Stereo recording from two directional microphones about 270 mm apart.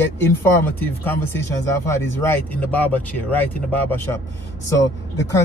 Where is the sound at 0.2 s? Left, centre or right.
Centre.